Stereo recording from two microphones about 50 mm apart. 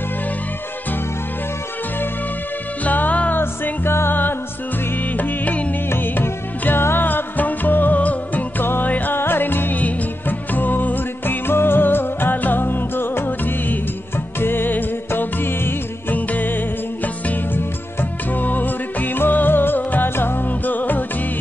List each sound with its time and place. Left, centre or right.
2.8 s music: left
3.3 s music: left
5.9 s music: left
9.1 s music: left
9.8 s music: left
16.2 s music: left